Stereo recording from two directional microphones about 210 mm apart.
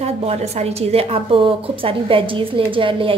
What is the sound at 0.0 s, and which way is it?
A woman's voice, 30° right (ahead or behind).